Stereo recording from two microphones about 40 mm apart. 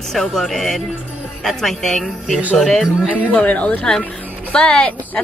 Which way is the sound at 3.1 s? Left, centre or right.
Left.